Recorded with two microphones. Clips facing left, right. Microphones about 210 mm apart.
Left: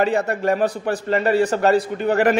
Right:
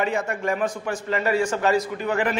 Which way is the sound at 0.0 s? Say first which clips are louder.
Left 5 dB; 35° left (ahead or behind).